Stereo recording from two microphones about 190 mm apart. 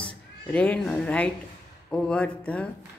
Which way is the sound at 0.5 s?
5° left (ahead or behind).